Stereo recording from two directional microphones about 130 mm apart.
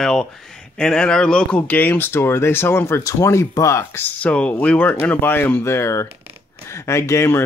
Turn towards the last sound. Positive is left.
turn(degrees=20)  # may be behind; listen again after turning